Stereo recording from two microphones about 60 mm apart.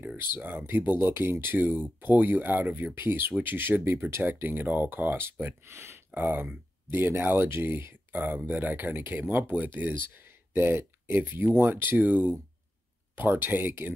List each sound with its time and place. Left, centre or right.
0.2 s speech: right